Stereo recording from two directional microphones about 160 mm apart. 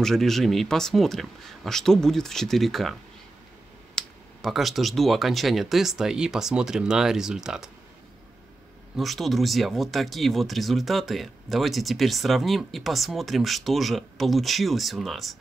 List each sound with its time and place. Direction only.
0.0 s speech: centre (ahead or behind)
8.9 s speech: centre (ahead or behind)